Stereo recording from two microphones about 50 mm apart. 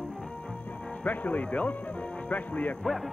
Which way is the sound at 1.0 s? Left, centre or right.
Left.